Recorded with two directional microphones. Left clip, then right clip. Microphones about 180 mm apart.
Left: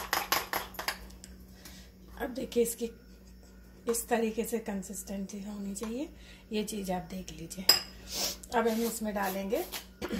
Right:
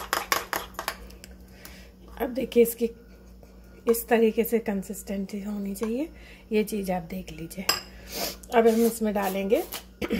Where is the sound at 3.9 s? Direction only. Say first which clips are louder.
Right 8 dB; 40° right (ahead or behind).